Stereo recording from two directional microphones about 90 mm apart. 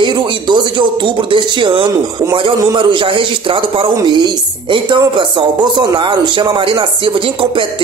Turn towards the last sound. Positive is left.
turn(degrees=-75)  # may be behind; listen again after turning